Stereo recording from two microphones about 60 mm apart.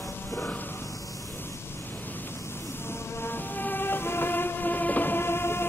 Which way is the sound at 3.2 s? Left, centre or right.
Left.